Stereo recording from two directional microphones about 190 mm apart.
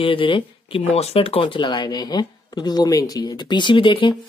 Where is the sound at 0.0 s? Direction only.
25° left (ahead or behind).